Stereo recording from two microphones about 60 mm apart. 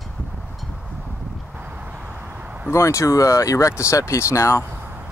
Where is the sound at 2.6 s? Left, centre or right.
Left.